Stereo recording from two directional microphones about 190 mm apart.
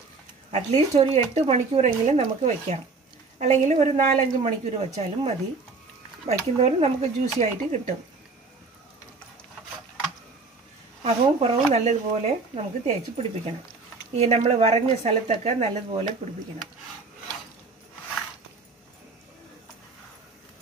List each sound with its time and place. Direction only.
0.5 s speech: 35° right (ahead or behind)
11.1 s speech: 35° right (ahead or behind)